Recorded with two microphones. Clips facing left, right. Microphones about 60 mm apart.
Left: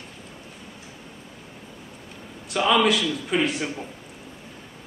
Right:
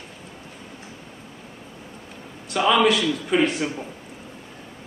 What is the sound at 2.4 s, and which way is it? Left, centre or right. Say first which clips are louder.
A man's voice: right 2 dB; centre.